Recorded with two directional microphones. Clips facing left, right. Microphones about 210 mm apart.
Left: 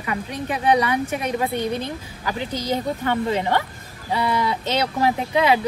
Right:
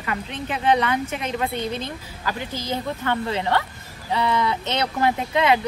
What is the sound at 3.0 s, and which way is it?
Speech, 15° left (ahead or behind).